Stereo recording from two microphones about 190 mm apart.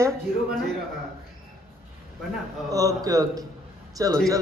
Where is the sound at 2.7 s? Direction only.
20° right (ahead or behind).